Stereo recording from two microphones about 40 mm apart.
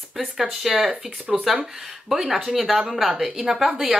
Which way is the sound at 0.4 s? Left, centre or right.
Centre.